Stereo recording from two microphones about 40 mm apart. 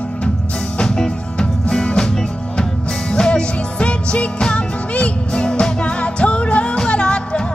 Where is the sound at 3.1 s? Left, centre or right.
Left.